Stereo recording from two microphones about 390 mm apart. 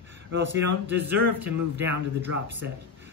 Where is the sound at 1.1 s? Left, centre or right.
Right.